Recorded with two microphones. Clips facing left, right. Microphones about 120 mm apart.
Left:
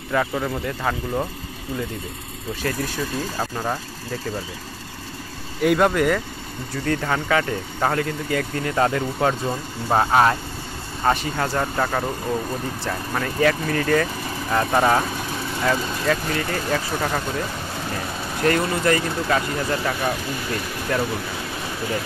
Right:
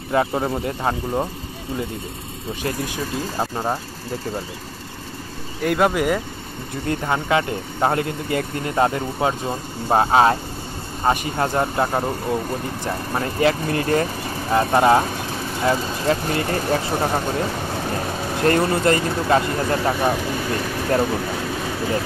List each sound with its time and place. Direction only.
0.1 s speech: 30° right (ahead or behind)
2.6 s speech: 25° right (ahead or behind)
5.6 s speech: centre (ahead or behind)
6.9 s speech: 20° right (ahead or behind)
13.1 s speech: 25° right (ahead or behind)
14.5 s speech: 20° right (ahead or behind); by 21.1 s 35° right (ahead or behind)